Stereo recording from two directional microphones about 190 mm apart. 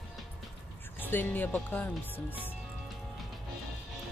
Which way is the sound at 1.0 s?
10° left (ahead or behind).